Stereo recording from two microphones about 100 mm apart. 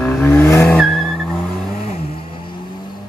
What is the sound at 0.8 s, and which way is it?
Vehicle, 5° left (ahead or behind).